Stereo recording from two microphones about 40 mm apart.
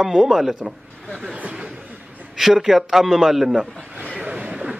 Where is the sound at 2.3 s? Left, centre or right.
Centre.